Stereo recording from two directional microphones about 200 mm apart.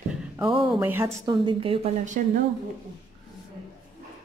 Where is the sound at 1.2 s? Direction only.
25° right (ahead or behind).